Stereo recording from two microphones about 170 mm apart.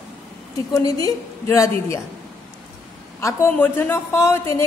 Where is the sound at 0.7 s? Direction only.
20° left (ahead or behind).